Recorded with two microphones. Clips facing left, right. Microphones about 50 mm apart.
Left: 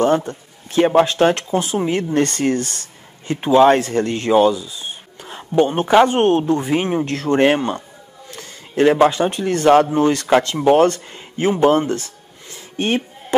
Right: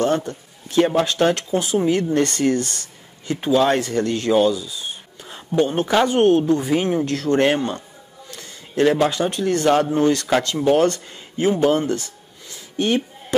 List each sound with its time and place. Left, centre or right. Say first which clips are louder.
0.0 s a man's voice: left 4 dB; left